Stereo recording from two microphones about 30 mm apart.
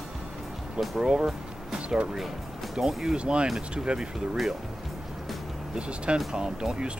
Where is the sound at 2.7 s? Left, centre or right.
Centre.